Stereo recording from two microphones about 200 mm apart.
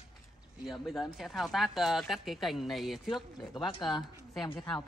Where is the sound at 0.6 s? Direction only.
Centre (ahead or behind).